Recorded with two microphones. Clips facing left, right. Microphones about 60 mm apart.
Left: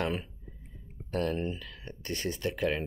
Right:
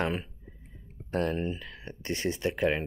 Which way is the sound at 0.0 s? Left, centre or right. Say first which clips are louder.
Right 2 dB; centre.